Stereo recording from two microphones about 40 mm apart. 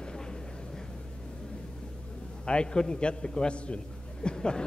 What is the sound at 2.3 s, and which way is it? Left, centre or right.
A man's voice, left.